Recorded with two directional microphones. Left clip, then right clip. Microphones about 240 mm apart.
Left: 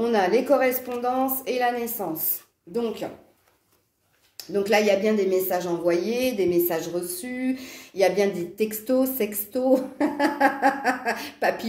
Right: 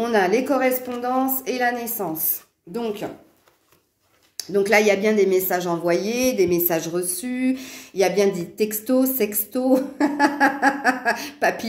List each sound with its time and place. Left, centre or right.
0.0 s a woman's voice: right
4.4 s speech: right